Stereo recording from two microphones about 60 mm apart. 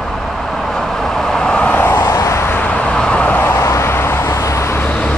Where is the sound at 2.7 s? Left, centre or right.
Centre.